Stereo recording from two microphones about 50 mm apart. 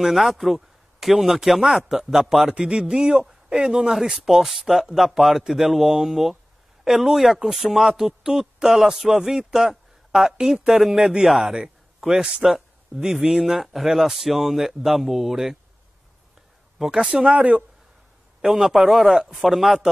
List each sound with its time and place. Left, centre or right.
0.0 s a man's voice: centre
16.7 s speech: centre
17.0 s speech: right
18.4 s a man's voice: centre